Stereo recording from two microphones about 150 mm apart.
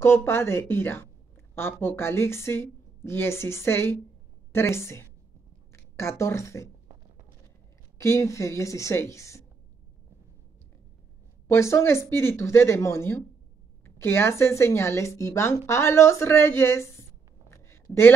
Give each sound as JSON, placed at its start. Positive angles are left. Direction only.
{"t": 0.0, "sound": "a woman's voice", "side_deg": 15}
{"t": 8.0, "sound": "a woman's voice", "side_deg": 20}
{"t": 11.4, "sound": "speech", "side_deg": 15}
{"t": 17.5, "sound": "a sound", "side_deg": 20}